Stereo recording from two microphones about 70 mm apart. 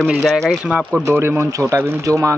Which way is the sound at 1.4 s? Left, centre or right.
Right.